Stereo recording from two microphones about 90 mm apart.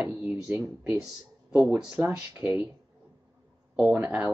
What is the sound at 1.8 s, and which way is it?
Speech, 20° right (ahead or behind).